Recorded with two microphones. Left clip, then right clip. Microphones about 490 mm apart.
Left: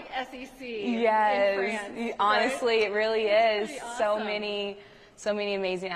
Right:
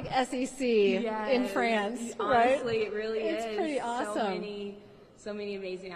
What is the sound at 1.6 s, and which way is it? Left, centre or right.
Speech, right.